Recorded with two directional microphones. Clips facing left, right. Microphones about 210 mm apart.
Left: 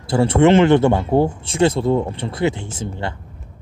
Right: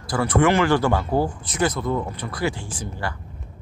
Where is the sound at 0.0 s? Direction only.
25° left (ahead or behind).